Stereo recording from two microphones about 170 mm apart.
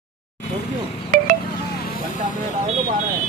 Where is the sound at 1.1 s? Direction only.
45° right (ahead or behind).